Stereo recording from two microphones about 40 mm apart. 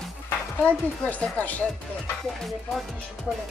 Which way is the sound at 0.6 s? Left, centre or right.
Left.